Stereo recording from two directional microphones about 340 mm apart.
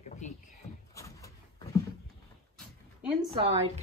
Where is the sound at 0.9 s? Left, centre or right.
Centre.